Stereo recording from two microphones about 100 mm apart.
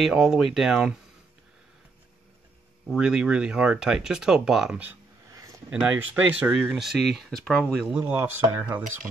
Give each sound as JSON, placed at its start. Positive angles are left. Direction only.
{"t": 0.0, "sound": "speech", "side_deg": -5}
{"t": 3.0, "sound": "speech", "side_deg": -10}
{"t": 5.3, "sound": "a sound", "side_deg": -35}
{"t": 5.7, "sound": "speech", "side_deg": -15}
{"t": 6.8, "sound": "speech", "side_deg": 0}
{"t": 8.0, "sound": "speech", "side_deg": -20}